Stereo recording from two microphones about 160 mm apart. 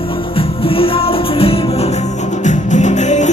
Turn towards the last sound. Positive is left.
turn(degrees=50)  # may be behind; listen again after turning